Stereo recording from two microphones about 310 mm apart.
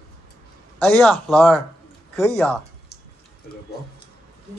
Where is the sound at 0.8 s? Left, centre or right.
Centre.